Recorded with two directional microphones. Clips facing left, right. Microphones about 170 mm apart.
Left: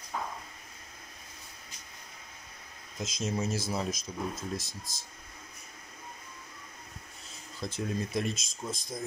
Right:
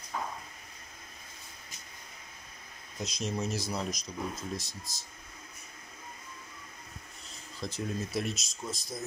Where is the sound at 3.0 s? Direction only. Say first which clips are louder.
Left 1 dB; centre (ahead or behind).